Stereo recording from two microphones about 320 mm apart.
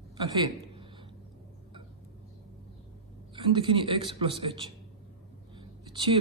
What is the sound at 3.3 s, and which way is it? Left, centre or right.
A man's voice, centre.